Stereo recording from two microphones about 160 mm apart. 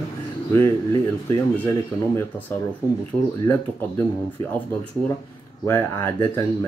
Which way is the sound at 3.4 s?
15° left (ahead or behind).